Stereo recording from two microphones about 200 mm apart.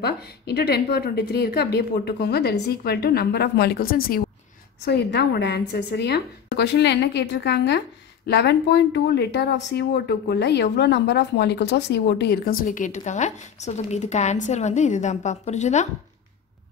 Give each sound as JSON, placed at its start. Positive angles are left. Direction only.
{"t": 0.0, "sound": "a woman's voice", "side_deg": 55}